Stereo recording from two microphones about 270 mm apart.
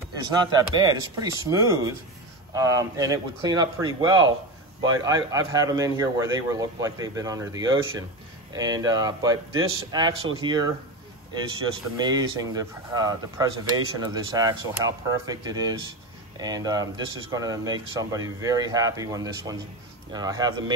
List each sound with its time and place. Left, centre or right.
0.7 s speech: centre